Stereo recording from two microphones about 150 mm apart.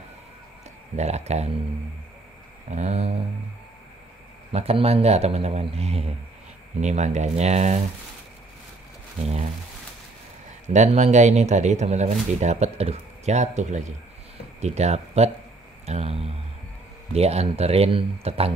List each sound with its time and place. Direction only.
0.9 s speech: 45° right (ahead or behind)
2.7 s speech: 50° right (ahead or behind)
4.5 s speech: 40° right (ahead or behind)
9.2 s speech: 50° right (ahead or behind)
10.7 s speech: 50° right (ahead or behind)